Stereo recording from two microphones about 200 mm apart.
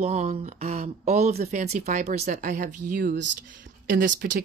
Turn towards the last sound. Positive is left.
turn(degrees=-40)  # may be behind; listen again after turning